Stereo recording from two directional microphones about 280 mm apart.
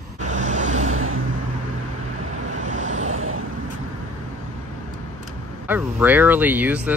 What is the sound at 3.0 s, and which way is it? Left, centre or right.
Vehicle, right.